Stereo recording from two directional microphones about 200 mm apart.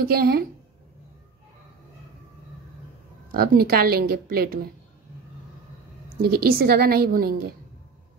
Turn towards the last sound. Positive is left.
turn(degrees=-45)  # may be behind; listen again after turning